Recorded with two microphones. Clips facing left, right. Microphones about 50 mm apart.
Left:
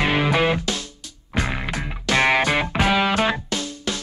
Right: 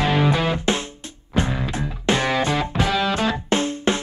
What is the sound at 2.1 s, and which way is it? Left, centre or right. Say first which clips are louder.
Music: left 5 dB; left.